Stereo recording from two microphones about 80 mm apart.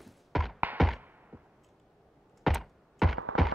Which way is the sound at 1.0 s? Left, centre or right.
Centre.